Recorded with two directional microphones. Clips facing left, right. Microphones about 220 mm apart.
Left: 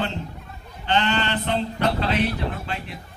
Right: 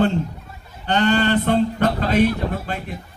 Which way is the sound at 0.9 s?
45° right (ahead or behind).